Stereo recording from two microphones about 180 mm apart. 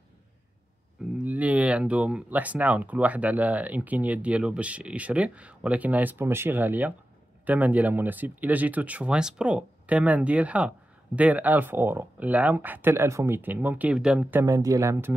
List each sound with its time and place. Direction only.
1.1 s speech: 10° right (ahead or behind)
14.4 s speech: 20° right (ahead or behind)